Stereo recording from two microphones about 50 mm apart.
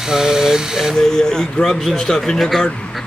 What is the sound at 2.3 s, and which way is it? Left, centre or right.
Speech, centre.